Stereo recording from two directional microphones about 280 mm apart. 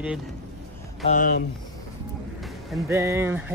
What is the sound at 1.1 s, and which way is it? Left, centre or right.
Speech, left.